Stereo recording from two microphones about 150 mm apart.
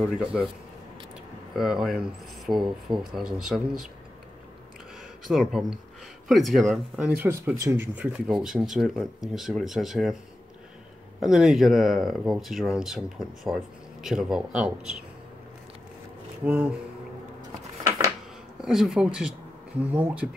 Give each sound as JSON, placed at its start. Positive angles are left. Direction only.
{"t": 0.3, "sound": "speech", "side_deg": -5}
{"t": 5.3, "sound": "speech", "side_deg": 0}
{"t": 7.2, "sound": "speech", "side_deg": -15}
{"t": 11.1, "sound": "speech", "side_deg": -5}
{"t": 14.0, "sound": "speech", "side_deg": -5}
{"t": 16.4, "sound": "speech", "side_deg": -10}
{"t": 17.8, "sound": "a sound", "side_deg": -20}
{"t": 18.6, "sound": "speech", "side_deg": 0}